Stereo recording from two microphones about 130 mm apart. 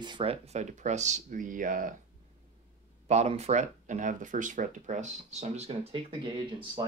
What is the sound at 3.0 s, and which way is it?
Speech, 60° right (ahead or behind).